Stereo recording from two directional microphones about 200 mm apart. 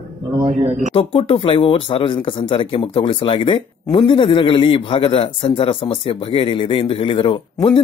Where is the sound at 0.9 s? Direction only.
25° left (ahead or behind).